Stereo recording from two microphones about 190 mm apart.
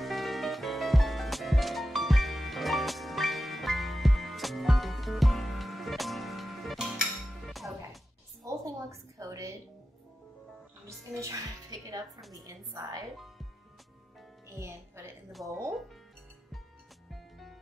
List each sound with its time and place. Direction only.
0.0 s music: centre (ahead or behind)
8.5 s a sound: 15° right (ahead or behind)
10.9 s a woman's voice: 15° right (ahead or behind)
14.6 s a woman's voice: 15° right (ahead or behind)
15.3 s speech: centre (ahead or behind)
17.1 s music: centre (ahead or behind)